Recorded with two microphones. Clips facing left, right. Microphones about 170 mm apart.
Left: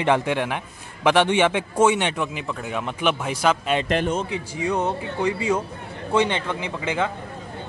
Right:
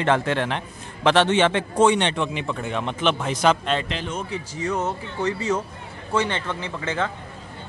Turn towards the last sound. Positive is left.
turn(degrees=15)  # may be behind; listen again after turning